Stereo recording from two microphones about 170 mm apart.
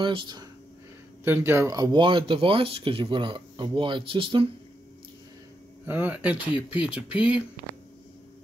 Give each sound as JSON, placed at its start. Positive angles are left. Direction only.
{"t": 0.0, "sound": "speech", "side_deg": -25}
{"t": 1.2, "sound": "speech", "side_deg": -10}
{"t": 5.9, "sound": "speech", "side_deg": -10}